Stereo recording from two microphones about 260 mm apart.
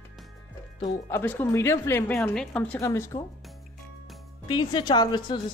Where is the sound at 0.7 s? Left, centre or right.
Centre.